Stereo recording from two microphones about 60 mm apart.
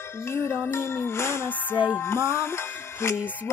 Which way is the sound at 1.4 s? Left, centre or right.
Left.